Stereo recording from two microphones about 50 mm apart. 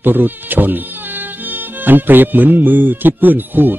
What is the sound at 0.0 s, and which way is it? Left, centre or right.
Speech, right.